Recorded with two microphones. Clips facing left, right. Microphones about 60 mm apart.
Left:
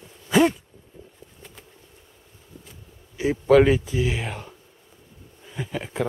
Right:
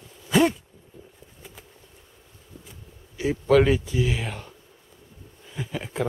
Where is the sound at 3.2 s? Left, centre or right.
Centre.